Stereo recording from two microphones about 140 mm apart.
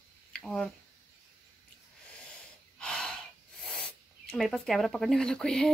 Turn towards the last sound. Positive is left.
turn(degrees=5)  # may be behind; listen again after turning